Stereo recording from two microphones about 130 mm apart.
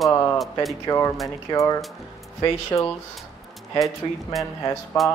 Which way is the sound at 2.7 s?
35° left (ahead or behind).